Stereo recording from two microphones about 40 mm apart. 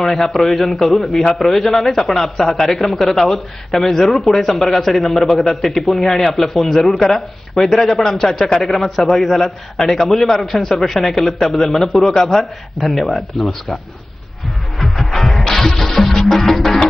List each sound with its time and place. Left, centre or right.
0.0 s speech: centre
14.8 s music: centre